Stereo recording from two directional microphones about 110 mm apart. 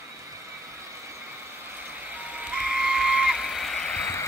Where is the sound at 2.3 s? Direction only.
10° right (ahead or behind); by 4.0 s 10° left (ahead or behind).